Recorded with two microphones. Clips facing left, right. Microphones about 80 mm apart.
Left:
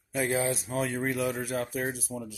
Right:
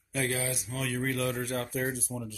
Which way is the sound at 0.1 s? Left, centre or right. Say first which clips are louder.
Left 4 dB; left.